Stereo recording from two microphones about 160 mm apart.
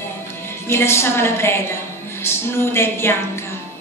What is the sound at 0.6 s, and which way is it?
A woman's voice, 15° left (ahead or behind).